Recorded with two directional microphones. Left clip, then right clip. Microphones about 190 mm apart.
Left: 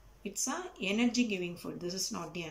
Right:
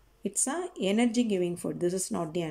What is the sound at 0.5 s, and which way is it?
Speech, 35° right (ahead or behind).